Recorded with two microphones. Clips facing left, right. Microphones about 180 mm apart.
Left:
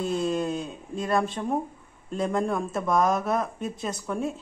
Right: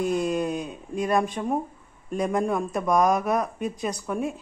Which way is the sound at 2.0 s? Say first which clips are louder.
Right 2 dB; 15° right (ahead or behind).